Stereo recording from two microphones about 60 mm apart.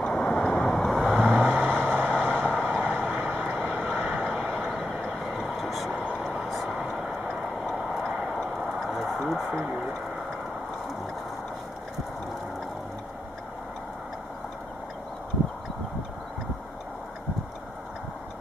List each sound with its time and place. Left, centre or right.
0.0 s boat: centre
1.1 s vehicle: right
2.3 s vehicle: centre
3.1 s vehicle: right
4.7 s vehicle: centre
8.4 s a sound: centre